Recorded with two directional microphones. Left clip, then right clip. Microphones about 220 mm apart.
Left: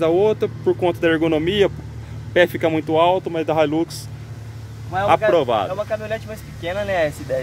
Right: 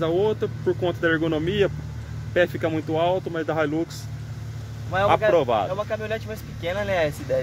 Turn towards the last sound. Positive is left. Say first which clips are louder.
# left 3 dB
turn(degrees=0)  # may be behind; listen again after turning